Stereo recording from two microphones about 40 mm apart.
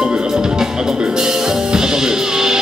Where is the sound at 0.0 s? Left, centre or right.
Centre.